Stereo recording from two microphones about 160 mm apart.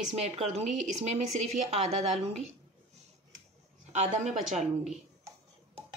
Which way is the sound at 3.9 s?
45° right (ahead or behind).